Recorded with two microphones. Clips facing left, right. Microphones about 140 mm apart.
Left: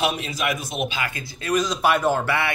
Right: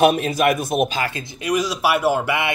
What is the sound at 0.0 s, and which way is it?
Speech, 50° right (ahead or behind).